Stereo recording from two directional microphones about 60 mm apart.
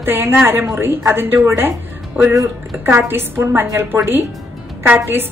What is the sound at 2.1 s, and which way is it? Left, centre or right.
A woman's voice, right.